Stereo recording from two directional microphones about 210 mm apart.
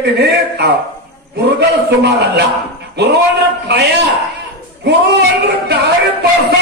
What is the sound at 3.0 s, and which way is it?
Music, 50° right (ahead or behind).